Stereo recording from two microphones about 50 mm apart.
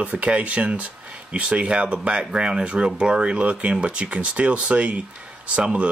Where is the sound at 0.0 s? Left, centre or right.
Right.